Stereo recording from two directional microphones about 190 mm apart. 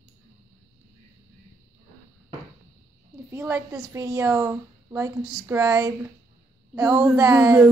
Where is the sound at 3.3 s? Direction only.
15° right (ahead or behind).